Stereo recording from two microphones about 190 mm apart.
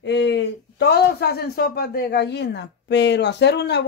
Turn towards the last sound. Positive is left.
turn(degrees=60)  # may be behind; listen again after turning